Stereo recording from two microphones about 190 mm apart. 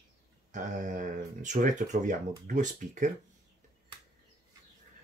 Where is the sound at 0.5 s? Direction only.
40° right (ahead or behind).